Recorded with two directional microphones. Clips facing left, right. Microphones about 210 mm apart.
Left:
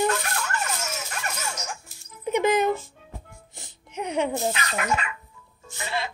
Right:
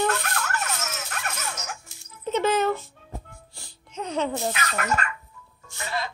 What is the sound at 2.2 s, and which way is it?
Music, 15° left (ahead or behind).